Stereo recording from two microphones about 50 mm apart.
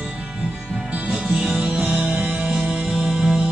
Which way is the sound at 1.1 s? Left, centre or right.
Centre.